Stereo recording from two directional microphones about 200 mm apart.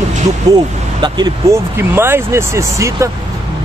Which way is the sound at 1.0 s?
20° right (ahead or behind).